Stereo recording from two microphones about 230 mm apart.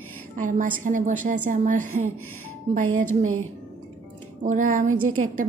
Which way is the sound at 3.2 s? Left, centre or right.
Right.